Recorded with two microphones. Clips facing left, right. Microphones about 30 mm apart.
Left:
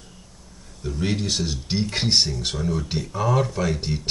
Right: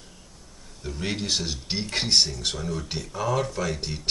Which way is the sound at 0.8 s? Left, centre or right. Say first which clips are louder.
Left 3 dB; centre.